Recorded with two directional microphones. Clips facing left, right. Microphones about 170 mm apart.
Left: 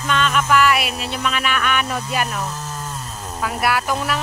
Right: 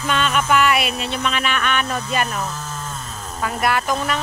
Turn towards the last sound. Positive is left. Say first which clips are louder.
# even
turn(degrees=5)  # may be behind; listen again after turning